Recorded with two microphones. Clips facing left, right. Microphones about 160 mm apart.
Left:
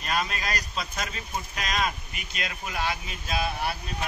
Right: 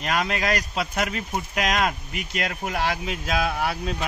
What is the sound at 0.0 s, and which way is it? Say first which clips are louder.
Speech: right 5 dB; 70° right (ahead or behind).